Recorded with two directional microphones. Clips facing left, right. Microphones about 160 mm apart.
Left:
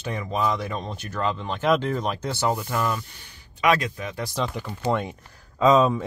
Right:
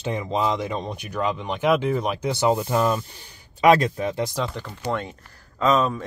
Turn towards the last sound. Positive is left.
turn(degrees=15)  # may be behind; listen again after turning